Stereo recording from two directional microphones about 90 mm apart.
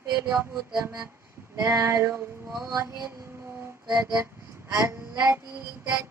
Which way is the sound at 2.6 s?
40° right (ahead or behind).